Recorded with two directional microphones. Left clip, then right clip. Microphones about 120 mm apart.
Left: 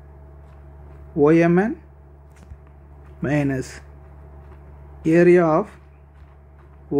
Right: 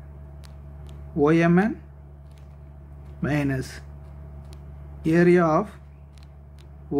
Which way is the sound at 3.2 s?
15° left (ahead or behind).